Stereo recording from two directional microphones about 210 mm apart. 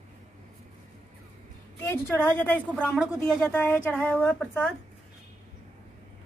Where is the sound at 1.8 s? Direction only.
10° left (ahead or behind).